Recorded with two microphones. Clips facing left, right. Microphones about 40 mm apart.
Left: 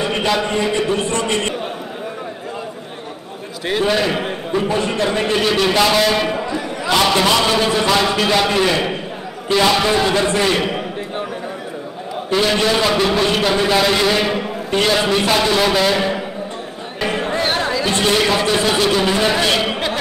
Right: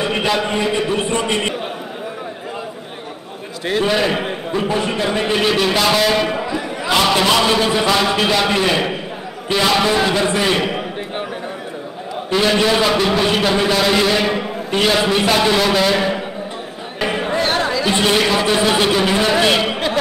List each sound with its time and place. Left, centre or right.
0.0 s a man's voice: centre
3.8 s a man's voice: centre
12.3 s a man's voice: centre
17.0 s a sound: centre
18.2 s a man's voice: centre
19.6 s chatter: centre